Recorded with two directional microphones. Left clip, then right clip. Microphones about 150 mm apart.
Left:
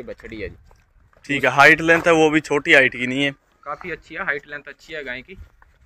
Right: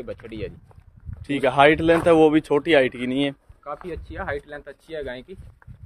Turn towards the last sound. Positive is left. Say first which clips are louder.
# left 2 dB
turn(degrees=-40)  # may be behind; listen again after turning